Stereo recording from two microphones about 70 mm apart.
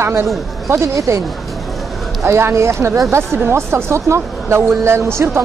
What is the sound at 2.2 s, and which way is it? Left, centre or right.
Speech, right.